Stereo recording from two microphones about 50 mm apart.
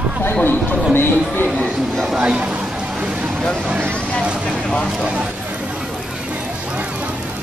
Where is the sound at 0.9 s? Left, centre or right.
Left.